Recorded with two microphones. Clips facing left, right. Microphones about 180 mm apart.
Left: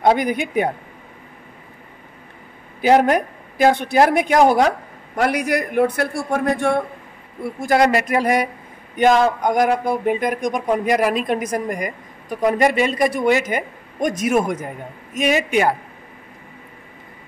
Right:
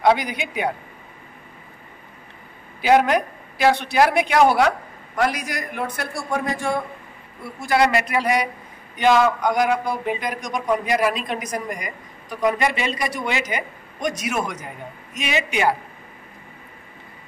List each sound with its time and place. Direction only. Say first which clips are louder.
0.0 s speech: left 2 dB; 50° left (ahead or behind)
2.8 s speech: left 2 dB; 40° left (ahead or behind)
5.2 s a man's voice: left 4 dB; 60° left (ahead or behind)
7.4 s speech: left 3 dB; 45° left (ahead or behind)